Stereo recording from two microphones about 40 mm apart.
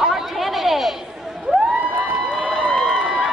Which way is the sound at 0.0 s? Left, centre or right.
Centre.